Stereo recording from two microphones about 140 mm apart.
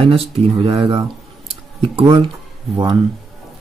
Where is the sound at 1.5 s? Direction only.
40° right (ahead or behind).